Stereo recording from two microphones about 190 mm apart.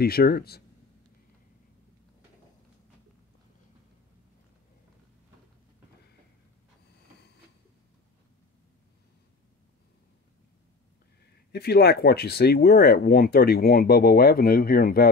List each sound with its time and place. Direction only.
0.0 s speech: 55° left (ahead or behind)
11.5 s speech: 55° left (ahead or behind)